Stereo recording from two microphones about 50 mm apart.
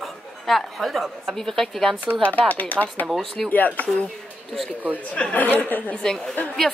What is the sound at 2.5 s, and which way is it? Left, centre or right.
Speech, left.